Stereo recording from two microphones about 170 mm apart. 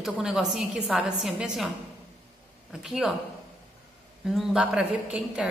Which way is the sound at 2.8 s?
Centre (ahead or behind).